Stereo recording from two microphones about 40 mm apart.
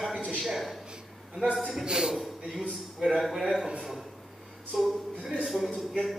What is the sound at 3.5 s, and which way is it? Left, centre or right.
Speech, right.